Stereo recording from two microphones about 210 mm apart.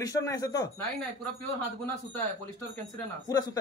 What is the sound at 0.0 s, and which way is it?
Speech, 15° left (ahead or behind).